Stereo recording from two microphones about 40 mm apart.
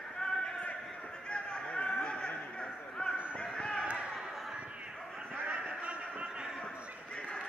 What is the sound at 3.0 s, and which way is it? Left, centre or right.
Basketball bounce, left.